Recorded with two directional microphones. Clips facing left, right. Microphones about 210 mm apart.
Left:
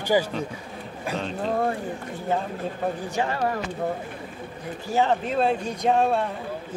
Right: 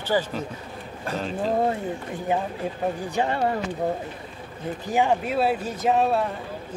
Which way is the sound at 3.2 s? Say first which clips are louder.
Right 2 dB; 25° right (ahead or behind).